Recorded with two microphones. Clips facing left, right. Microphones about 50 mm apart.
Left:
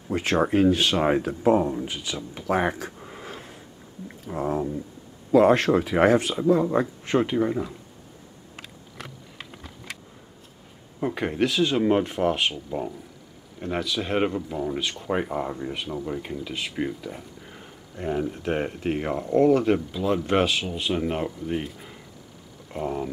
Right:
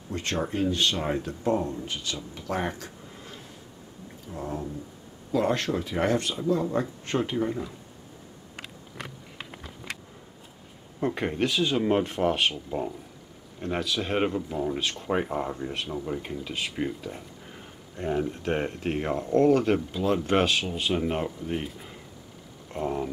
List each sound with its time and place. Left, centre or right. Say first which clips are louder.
0.1 s speech: left 7 dB; centre
4.3 s speech: left 7 dB; left
5.3 s speech: left 8 dB; centre
11.0 s speech: left 2 dB; centre